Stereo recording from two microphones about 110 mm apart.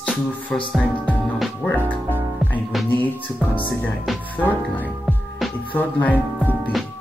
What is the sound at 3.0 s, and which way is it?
Speech, 15° left (ahead or behind).